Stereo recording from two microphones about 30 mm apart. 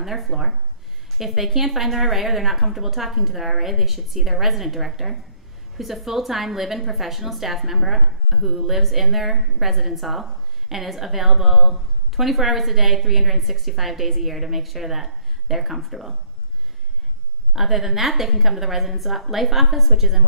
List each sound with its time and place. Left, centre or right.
0.0 s a woman's voice: centre
17.6 s a woman's voice: centre